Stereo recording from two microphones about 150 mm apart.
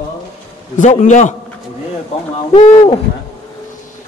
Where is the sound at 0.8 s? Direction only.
55° left (ahead or behind).